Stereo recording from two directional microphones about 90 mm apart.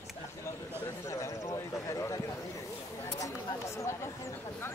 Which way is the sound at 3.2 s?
40° left (ahead or behind).